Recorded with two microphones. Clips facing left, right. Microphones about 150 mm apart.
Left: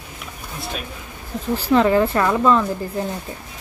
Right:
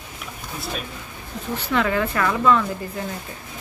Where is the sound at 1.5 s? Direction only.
35° left (ahead or behind).